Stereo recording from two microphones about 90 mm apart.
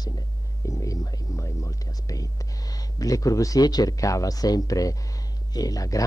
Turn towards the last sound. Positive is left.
turn(degrees=40)  # may be behind; listen again after turning